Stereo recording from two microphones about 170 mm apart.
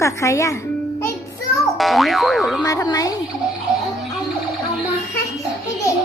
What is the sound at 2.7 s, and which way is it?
Speech, 20° left (ahead or behind).